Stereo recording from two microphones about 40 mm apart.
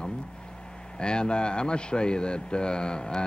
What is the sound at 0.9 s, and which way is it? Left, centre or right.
Speech, left.